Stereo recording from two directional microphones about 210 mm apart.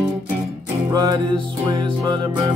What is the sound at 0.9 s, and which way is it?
Music, 20° right (ahead or behind).